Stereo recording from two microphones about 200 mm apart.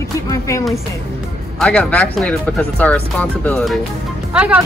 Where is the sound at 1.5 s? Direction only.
5° left (ahead or behind).